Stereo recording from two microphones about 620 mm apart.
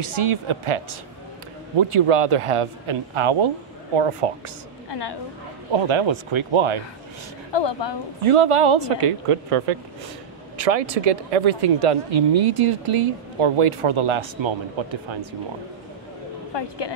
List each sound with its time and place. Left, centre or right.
0.1 s speech: right
4.8 s a sound: left
5.7 s speech: right
7.5 s a woman's voice: left
8.2 s speech: right
10.6 s speech: right
14.4 s speech: right
16.5 s a woman's voice: left